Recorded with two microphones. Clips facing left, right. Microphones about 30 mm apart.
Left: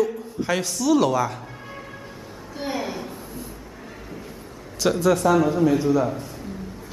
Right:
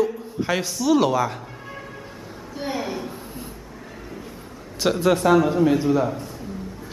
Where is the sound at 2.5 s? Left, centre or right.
Centre.